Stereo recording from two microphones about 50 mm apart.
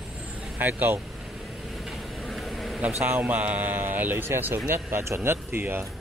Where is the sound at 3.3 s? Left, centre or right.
Right.